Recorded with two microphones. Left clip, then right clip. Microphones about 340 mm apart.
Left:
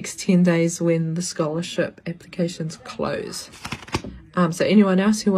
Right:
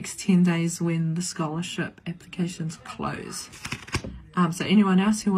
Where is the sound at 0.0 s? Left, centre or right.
Centre.